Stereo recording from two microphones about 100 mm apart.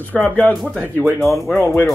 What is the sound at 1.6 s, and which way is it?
Speech, 25° left (ahead or behind).